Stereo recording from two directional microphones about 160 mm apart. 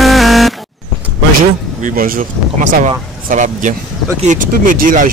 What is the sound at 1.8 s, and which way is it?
Speech, 60° right (ahead or behind).